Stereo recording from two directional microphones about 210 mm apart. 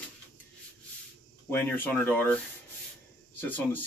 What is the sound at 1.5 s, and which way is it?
Speech, 10° left (ahead or behind).